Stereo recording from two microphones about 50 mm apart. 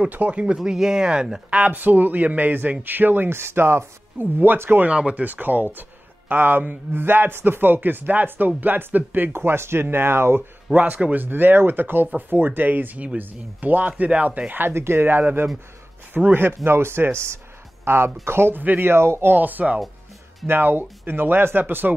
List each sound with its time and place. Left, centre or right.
0.1 s speech: right
0.6 s speech: centre
1.6 s speech: right
3.3 s speech: right
4.8 s speech: right
5.2 s speech: right
9.3 s speech: right
10.7 s speech: right
14.7 s speech: right
16.3 s speech: right
19.3 s speech: right
20.4 s speech: right